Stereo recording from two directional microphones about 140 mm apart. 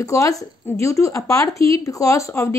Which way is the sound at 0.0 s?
25° left (ahead or behind).